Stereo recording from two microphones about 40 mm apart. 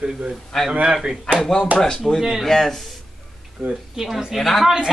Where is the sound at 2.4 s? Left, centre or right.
Centre.